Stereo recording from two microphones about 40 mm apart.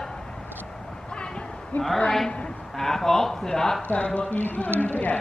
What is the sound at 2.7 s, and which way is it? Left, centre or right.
Speech, centre.